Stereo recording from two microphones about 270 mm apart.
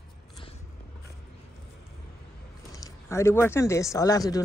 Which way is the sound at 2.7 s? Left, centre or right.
Centre.